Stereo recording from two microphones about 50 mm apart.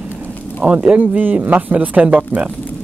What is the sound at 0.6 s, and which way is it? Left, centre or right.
Speech, right.